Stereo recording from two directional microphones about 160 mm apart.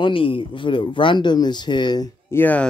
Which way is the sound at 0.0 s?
35° left (ahead or behind).